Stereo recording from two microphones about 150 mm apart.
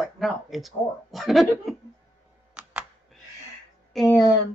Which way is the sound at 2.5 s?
5° right (ahead or behind).